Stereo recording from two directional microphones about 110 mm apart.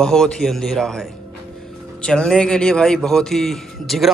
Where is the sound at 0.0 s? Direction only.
5° left (ahead or behind).